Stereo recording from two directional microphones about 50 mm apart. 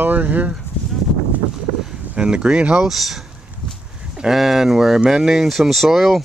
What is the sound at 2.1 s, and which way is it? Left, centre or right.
Speech, centre.